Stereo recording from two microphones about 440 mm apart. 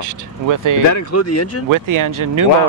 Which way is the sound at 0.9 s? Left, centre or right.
Left.